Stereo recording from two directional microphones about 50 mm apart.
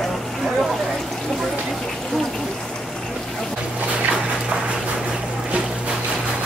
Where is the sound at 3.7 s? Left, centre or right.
Right.